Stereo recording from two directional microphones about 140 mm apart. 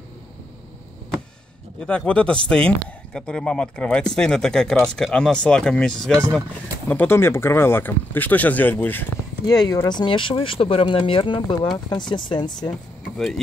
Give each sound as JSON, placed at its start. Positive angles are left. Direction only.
{"t": 1.9, "sound": "speech", "side_deg": 10}
{"t": 6.9, "sound": "speech", "side_deg": 15}
{"t": 9.5, "sound": "speech", "side_deg": 25}